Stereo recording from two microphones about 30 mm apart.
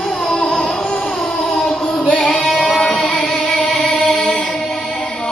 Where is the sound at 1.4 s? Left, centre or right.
Centre.